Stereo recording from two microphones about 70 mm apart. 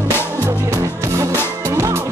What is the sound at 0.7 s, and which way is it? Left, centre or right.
Music, right.